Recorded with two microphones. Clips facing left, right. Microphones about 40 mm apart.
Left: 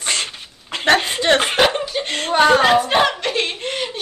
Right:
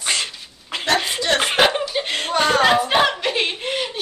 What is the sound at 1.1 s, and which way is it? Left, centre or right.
Snicker, left.